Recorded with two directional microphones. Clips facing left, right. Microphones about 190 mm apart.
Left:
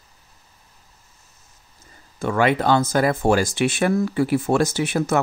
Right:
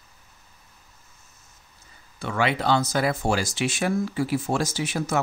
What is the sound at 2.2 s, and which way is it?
Speech, 50° left (ahead or behind).